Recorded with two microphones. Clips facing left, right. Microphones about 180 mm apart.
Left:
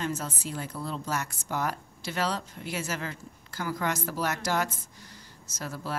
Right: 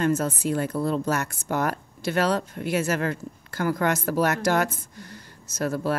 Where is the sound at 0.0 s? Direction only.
60° right (ahead or behind).